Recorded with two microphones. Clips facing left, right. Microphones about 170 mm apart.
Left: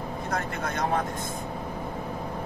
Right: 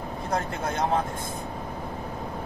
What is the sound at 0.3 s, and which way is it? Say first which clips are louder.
Speech: right 3 dB; 25° right (ahead or behind).